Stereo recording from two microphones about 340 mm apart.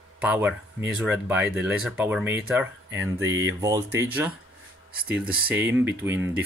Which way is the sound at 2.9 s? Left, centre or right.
Right.